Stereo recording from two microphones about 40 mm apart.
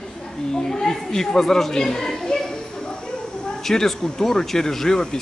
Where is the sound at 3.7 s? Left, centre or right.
Centre.